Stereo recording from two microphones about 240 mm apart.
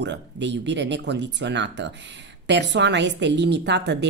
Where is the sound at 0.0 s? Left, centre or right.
Right.